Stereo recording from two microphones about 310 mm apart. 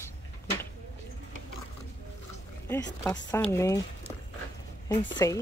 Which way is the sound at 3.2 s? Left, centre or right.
Centre.